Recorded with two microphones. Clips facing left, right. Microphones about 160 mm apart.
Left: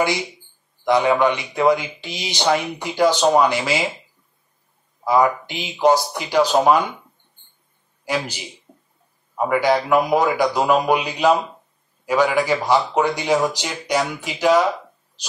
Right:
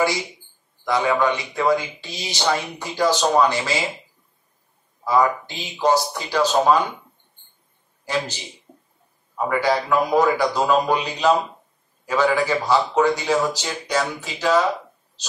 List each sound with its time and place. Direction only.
0.8 s speech: 20° left (ahead or behind)
5.0 s speech: 15° left (ahead or behind)
8.0 s a man's voice: 10° left (ahead or behind)
9.5 s speech: 15° left (ahead or behind)